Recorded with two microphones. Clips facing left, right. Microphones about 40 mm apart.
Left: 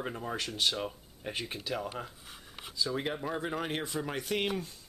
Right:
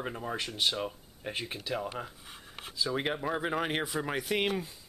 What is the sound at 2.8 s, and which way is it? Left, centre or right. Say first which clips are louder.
Speech: right 2 dB; right.